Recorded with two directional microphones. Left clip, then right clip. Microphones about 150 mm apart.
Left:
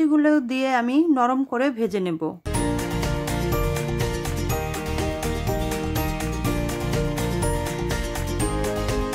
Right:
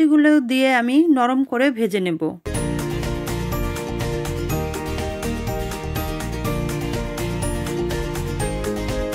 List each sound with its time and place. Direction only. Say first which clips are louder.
0.0 s speech: right 4 dB; 20° right (ahead or behind)